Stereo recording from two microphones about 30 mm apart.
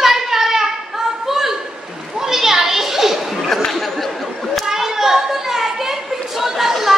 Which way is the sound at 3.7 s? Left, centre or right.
Centre.